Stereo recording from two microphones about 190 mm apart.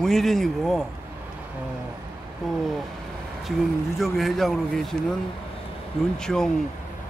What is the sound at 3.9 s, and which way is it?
Speech, centre (ahead or behind).